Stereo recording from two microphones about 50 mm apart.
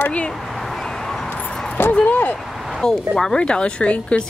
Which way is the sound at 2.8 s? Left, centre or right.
Centre.